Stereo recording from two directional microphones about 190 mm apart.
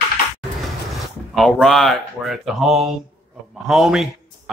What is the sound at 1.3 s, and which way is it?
Speech, centre (ahead or behind).